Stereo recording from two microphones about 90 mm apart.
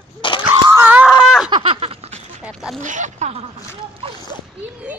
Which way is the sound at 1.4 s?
75° right (ahead or behind).